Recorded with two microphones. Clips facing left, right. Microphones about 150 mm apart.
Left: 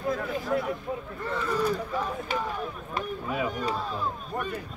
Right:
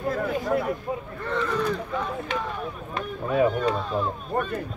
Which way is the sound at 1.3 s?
10° left (ahead or behind).